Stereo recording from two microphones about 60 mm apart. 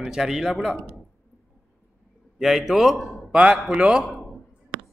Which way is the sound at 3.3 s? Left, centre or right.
Centre.